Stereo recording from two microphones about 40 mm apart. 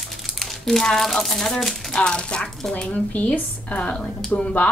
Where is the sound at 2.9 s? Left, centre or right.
Left.